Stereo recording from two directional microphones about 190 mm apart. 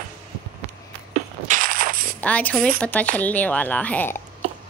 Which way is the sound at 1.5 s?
45° right (ahead or behind).